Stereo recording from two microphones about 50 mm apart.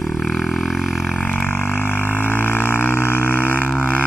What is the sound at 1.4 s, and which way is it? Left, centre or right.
Didgeridoo, left.